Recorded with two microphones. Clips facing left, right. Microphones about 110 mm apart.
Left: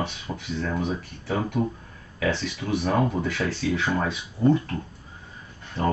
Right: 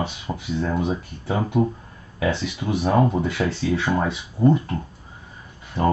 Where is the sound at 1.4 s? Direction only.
15° right (ahead or behind).